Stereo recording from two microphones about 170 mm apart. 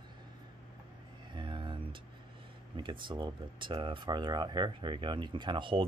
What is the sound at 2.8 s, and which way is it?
Speech, 30° right (ahead or behind).